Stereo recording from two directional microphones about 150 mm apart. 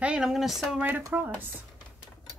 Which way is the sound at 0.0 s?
5° right (ahead or behind).